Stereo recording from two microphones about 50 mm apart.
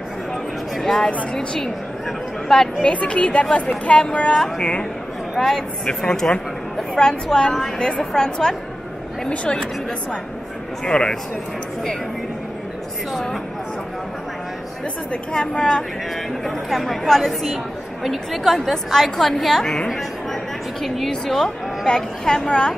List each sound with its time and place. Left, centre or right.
0.7 s a woman's voice: centre
2.0 s a sound: centre
2.8 s speech: left
5.3 s a woman's voice: centre
10.9 s a woman's voice: centre
15.3 s a woman's voice: centre
16.4 s a woman's voice: centre
21.8 s a woman's voice: centre